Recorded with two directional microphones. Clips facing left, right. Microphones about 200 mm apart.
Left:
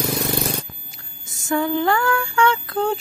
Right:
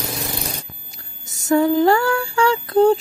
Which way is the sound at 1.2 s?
40° right (ahead or behind).